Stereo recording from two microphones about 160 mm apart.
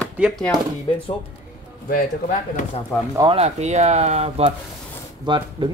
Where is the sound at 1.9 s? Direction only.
55° left (ahead or behind).